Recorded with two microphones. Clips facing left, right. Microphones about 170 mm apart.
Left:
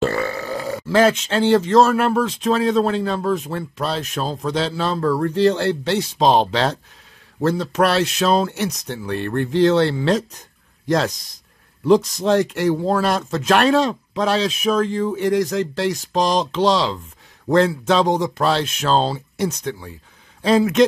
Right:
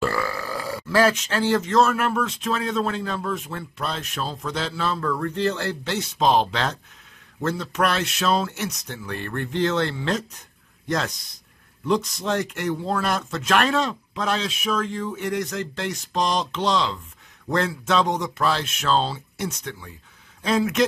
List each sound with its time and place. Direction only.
0.1 s burping: 25° left (ahead or behind)
1.2 s speech: 30° left (ahead or behind)
11.8 s speech: 40° left (ahead or behind)